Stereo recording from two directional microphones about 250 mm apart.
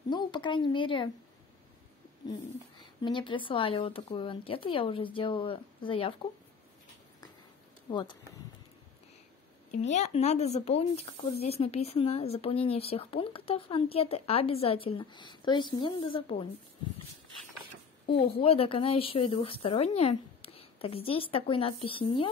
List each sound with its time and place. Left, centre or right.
0.1 s speech: centre
3.0 s speech: centre
7.9 s speech: centre
9.7 s speech: left
18.0 s speech: left